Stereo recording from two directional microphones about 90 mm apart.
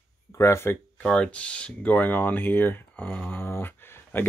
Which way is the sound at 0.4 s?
30° left (ahead or behind).